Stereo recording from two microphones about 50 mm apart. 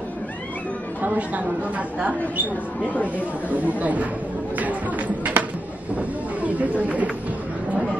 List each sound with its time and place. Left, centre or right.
1.0 s speech: right